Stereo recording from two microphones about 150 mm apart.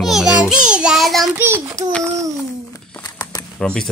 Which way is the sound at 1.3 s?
15° right (ahead or behind).